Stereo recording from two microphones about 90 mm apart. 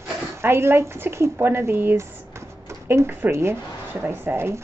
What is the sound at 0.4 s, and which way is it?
Speech, 30° right (ahead or behind).